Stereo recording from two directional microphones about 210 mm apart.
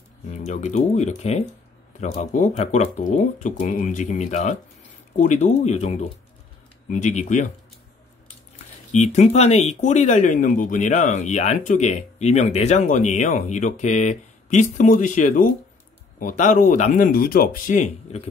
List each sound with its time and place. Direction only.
0.3 s speech: 35° left (ahead or behind)
8.9 s speech: 35° left (ahead or behind)